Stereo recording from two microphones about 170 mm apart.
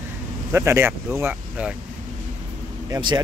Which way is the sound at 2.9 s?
25° right (ahead or behind).